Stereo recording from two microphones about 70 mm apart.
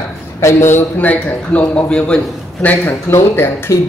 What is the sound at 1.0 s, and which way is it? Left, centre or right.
A man's voice, left.